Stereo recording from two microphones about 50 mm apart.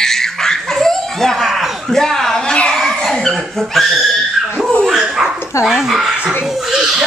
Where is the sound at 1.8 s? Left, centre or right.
Centre.